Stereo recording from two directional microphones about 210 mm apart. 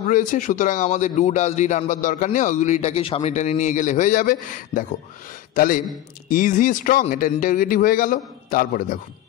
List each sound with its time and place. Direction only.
0.1 s speech: 35° left (ahead or behind)